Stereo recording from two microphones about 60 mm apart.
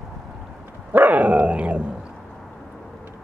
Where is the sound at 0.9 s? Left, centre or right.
Right.